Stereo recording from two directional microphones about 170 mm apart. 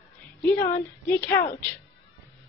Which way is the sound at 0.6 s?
15° left (ahead or behind).